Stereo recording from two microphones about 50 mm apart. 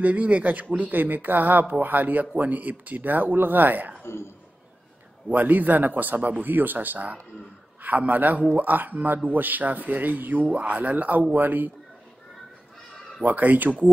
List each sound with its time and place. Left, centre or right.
0.0 s speech: right
4.0 s speech: left
5.3 s speech: right
13.2 s speech: right